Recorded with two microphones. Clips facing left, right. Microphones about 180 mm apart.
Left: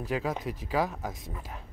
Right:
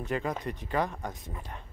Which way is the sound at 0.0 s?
Centre (ahead or behind).